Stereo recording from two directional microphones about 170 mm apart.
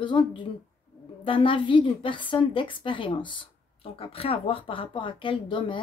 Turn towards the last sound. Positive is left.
turn(degrees=30)  # may be behind; listen again after turning